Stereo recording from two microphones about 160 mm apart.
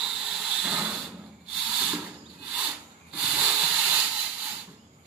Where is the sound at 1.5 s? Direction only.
5° right (ahead or behind).